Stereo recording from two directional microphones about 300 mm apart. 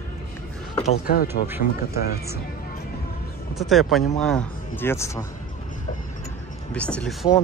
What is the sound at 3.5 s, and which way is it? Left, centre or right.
Speech, centre.